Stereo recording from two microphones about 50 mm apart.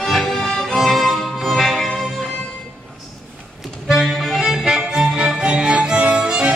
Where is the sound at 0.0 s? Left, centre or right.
Centre.